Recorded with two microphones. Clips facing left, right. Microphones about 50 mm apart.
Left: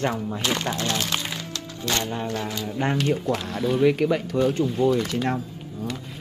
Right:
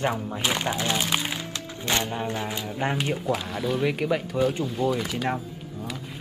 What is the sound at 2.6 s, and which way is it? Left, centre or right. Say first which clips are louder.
Speech: left 5 dB; centre.